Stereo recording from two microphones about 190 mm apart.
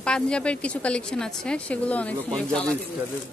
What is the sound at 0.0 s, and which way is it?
A woman's voice, 5° left (ahead or behind).